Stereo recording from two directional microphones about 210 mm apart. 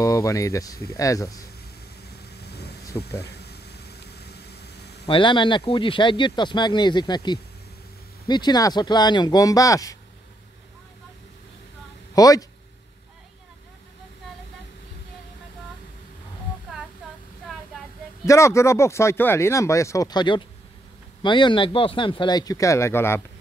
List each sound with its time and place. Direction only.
0.0 s speech: 15° left (ahead or behind)
2.0 s vehicle: 50° left (ahead or behind)
3.2 s a sound: 50° left (ahead or behind)
5.0 s speech: 25° left (ahead or behind)
12.2 s speech: 15° left (ahead or behind)
18.2 s speech: 15° left (ahead or behind)